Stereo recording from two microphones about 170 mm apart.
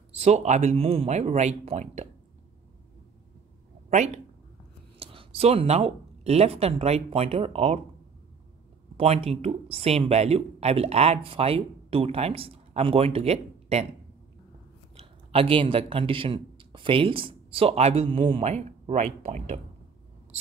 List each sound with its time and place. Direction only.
0.2 s speech: 40° right (ahead or behind)
4.9 s speech: 35° right (ahead or behind)
8.9 s speech: 35° right (ahead or behind)
15.0 s a man's voice: 35° right (ahead or behind)